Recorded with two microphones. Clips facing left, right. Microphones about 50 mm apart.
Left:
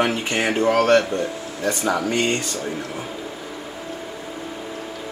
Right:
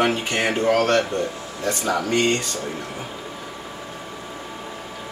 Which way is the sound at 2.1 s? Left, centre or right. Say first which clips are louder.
Right 1 dB; centre.